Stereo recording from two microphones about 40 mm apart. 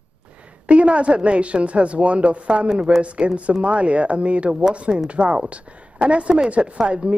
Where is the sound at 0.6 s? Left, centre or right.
Right.